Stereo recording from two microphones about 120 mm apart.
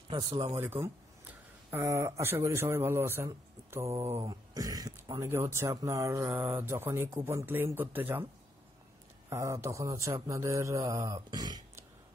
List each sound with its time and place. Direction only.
0.1 s speech: 45° right (ahead or behind)
0.7 s speech: 20° right (ahead or behind)
4.2 s speech: 30° right (ahead or behind)
5.2 s speech: 25° right (ahead or behind)
9.3 s speech: 25° right (ahead or behind)